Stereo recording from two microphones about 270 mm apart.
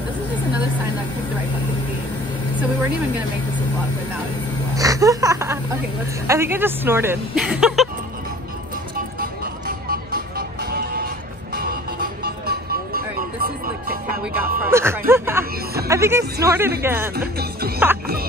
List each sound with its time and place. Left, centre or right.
4.7 s a woman's voice: centre
9.2 s music: right
14.6 s music: centre
15.9 s speech: centre
17.1 s music: right